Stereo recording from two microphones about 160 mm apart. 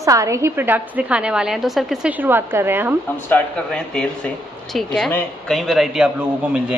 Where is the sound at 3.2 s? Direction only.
10° left (ahead or behind).